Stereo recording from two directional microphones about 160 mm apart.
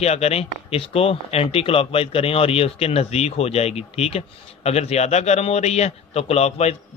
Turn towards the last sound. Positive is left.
turn(degrees=40)  # may be behind; listen again after turning